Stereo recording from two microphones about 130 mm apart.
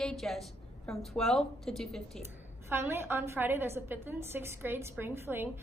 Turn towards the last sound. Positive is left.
turn(degrees=-20)  # may be behind; listen again after turning